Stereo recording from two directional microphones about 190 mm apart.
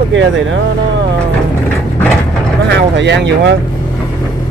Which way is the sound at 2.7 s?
65° right (ahead or behind).